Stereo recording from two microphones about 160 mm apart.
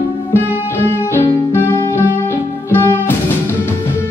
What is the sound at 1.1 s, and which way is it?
Music, 15° left (ahead or behind).